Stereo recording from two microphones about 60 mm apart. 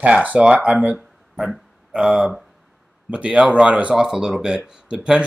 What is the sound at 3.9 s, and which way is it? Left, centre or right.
Speech, centre.